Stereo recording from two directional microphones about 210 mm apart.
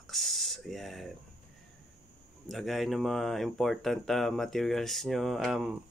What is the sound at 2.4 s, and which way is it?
Speech, centre (ahead or behind).